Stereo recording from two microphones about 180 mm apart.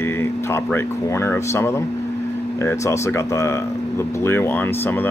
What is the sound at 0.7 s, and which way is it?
Speech, 15° left (ahead or behind).